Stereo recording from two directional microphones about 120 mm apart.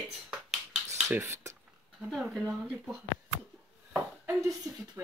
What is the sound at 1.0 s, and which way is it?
Speech, 20° right (ahead or behind).